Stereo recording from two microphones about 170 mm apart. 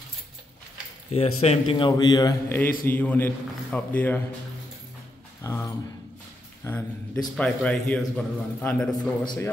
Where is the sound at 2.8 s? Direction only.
10° left (ahead or behind).